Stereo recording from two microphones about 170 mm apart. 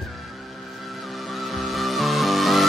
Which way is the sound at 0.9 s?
Centre (ahead or behind).